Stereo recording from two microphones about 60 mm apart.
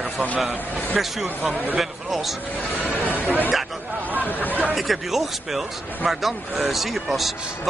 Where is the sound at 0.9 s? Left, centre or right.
Centre.